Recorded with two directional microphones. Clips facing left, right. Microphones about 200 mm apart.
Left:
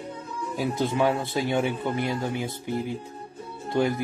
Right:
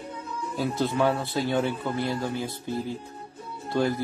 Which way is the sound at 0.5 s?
15° left (ahead or behind).